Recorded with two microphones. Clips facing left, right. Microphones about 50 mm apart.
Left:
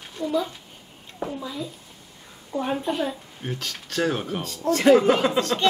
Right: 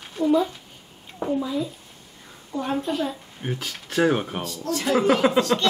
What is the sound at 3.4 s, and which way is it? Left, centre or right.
Speech, centre.